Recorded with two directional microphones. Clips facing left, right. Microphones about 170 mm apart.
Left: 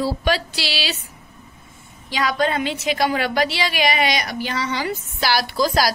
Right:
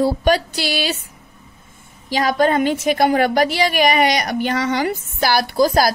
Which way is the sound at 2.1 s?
45° right (ahead or behind).